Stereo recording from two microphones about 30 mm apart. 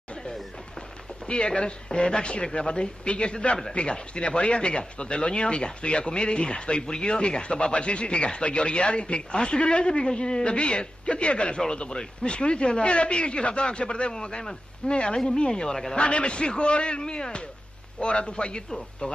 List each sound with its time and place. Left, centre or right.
1.2 s speech: left
7.7 s speech: left
14.1 s speech: left
15.6 s speech: centre
16.0 s speech: left